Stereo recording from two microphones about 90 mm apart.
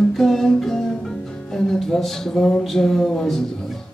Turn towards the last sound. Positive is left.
turn(degrees=5)  # may be behind; listen again after turning